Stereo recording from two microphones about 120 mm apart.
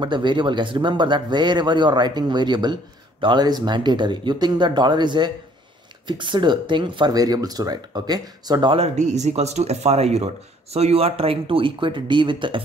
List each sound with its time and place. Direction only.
0.0 s speech: 40° right (ahead or behind)
8.7 s speech: 70° right (ahead or behind); by 12.6 s 45° right (ahead or behind)